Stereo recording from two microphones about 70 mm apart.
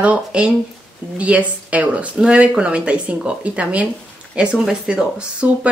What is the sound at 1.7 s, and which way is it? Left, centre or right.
Speech, centre.